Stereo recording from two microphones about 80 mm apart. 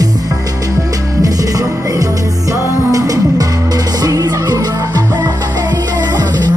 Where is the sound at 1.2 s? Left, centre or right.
Right.